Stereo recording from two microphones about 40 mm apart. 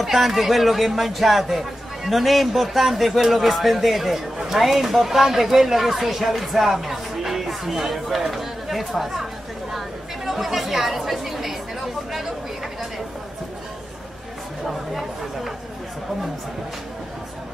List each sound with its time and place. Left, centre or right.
0.0 s speech: centre